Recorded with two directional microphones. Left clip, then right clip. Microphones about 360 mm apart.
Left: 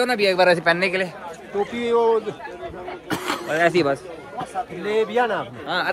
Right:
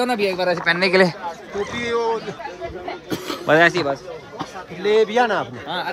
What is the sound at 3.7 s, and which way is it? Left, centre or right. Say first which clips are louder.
Speech: left 2 dB; left.